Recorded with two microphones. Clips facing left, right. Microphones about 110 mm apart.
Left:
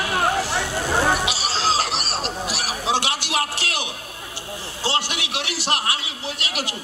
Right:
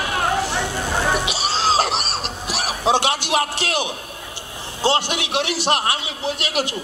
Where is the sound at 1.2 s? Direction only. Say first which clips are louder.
Right 2 dB; 20° right (ahead or behind).